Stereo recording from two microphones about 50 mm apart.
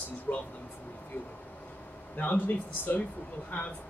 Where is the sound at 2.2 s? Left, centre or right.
Left.